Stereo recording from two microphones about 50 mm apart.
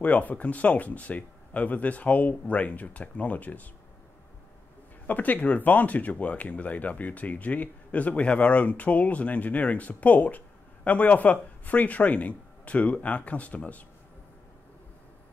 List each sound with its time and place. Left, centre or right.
0.0 s speech: left
5.0 s speech: left